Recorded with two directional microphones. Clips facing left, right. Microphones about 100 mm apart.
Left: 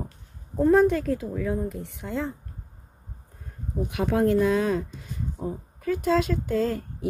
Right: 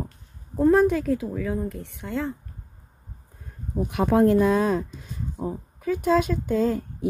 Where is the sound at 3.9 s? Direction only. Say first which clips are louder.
Right 4 dB; 40° right (ahead or behind).